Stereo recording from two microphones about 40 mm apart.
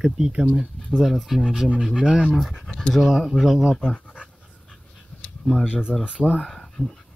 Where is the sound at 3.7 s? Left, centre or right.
Left.